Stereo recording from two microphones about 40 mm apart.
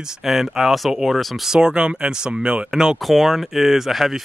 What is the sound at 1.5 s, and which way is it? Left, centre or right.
Speech, centre.